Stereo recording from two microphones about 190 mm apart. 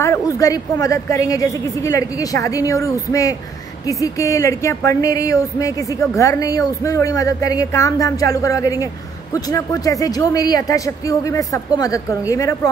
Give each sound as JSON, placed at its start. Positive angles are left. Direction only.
{"t": 0.0, "sound": "a woman's voice", "side_deg": 15}